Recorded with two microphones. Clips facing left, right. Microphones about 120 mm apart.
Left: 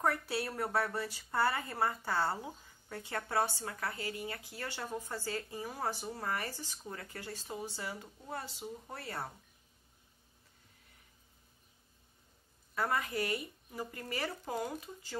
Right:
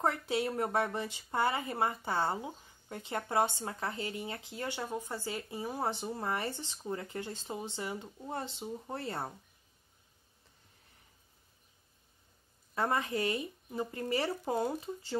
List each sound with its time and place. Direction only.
0.0 s speech: 20° right (ahead or behind)
12.7 s speech: 25° right (ahead or behind)